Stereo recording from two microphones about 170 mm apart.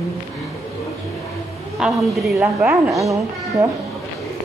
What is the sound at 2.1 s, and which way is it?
Speech, centre (ahead or behind).